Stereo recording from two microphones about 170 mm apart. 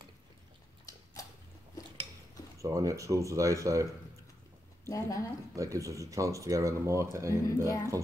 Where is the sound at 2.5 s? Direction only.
20° right (ahead or behind).